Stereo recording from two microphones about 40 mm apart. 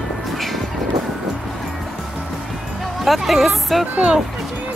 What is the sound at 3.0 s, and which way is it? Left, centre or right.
Speech, centre.